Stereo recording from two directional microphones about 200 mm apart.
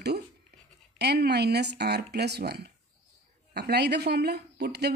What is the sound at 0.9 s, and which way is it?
Speech, 55° right (ahead or behind).